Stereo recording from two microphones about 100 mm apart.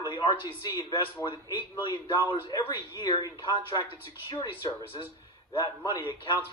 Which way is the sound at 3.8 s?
35° left (ahead or behind).